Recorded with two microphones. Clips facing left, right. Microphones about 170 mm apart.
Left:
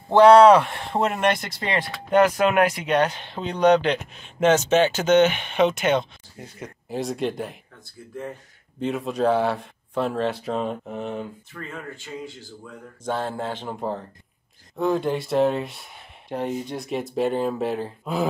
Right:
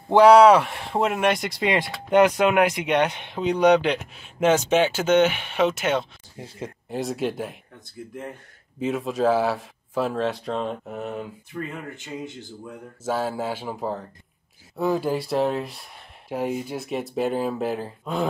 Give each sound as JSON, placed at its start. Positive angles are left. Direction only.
{"t": 0.1, "sound": "speech", "side_deg": -10}
{"t": 6.3, "sound": "speech", "side_deg": -25}
{"t": 6.9, "sound": "speech", "side_deg": 0}
{"t": 8.7, "sound": "speech", "side_deg": 0}
{"t": 11.5, "sound": "speech", "side_deg": -20}
{"t": 13.0, "sound": "speech", "side_deg": -5}